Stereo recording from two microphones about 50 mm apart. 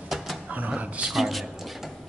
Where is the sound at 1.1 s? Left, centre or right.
Centre.